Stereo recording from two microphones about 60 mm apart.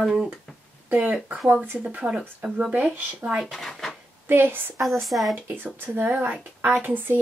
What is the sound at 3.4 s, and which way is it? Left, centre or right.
Speech, centre.